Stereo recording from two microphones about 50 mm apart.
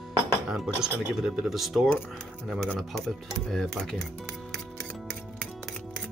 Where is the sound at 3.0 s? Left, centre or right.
Centre.